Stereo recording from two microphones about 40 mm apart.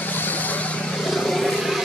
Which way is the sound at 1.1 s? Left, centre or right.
Centre.